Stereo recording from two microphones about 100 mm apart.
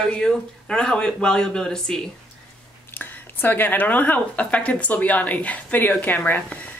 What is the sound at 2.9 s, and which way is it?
Speech, 20° left (ahead or behind).